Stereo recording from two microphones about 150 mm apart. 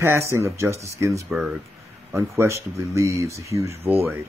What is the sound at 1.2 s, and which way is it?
Speech, 5° right (ahead or behind).